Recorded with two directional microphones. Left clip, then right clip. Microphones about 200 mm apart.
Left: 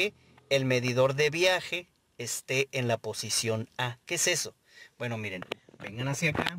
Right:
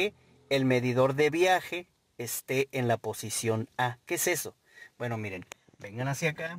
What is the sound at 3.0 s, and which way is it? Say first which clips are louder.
Speech: left 1 dB; 60° right (ahead or behind).